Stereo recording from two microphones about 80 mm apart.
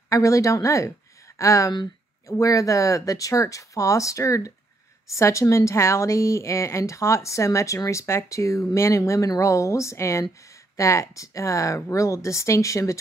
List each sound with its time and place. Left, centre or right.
0.1 s a woman's voice: left